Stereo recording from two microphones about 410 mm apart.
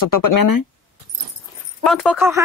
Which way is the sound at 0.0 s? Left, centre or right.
Left.